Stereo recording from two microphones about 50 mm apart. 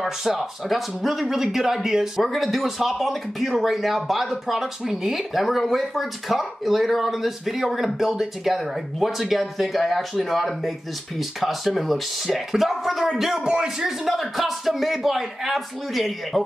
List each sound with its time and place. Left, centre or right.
0.0 s speech: centre